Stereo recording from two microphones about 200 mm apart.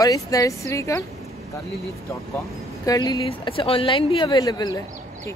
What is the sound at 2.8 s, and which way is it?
Speech, 20° left (ahead or behind).